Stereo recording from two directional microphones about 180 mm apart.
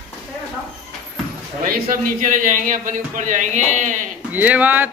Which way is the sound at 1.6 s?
50° right (ahead or behind).